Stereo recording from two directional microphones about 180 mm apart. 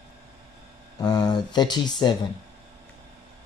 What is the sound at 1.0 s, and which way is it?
Speech, 20° left (ahead or behind).